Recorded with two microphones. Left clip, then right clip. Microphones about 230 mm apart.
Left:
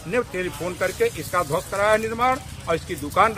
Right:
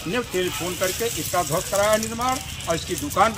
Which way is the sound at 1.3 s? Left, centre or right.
Centre.